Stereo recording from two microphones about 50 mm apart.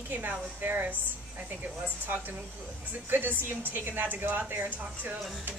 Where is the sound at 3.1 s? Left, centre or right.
Right.